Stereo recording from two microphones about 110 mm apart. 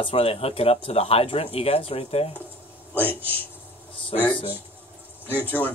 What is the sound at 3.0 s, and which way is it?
Speech, 15° right (ahead or behind).